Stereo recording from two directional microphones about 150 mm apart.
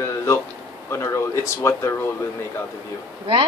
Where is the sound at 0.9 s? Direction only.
20° left (ahead or behind).